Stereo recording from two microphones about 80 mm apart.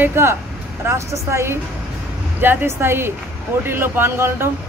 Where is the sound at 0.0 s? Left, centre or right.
Right.